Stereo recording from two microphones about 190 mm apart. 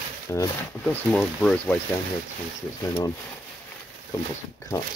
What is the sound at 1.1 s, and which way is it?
Speech, 5° left (ahead or behind).